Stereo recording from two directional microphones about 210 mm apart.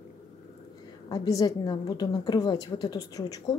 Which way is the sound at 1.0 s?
20° left (ahead or behind).